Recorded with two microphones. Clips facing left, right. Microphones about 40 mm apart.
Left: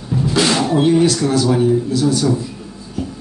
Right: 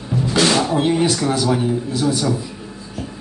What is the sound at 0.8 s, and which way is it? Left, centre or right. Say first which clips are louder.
A man's voice: left 4 dB; centre.